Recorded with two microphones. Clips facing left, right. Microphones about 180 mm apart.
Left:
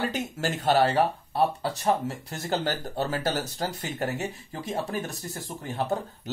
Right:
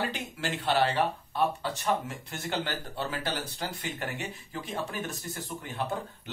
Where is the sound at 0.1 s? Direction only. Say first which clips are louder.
Left 5 dB; 45° left (ahead or behind).